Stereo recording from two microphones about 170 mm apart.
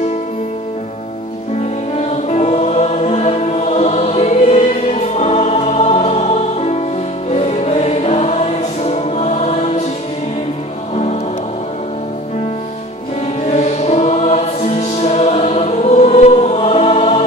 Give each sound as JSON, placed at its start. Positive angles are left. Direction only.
{"t": 2.2, "sound": "music", "side_deg": 40}
{"t": 13.5, "sound": "music", "side_deg": 40}